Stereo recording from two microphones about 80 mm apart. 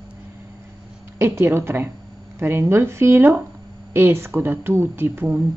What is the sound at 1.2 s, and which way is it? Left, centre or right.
Speech, right.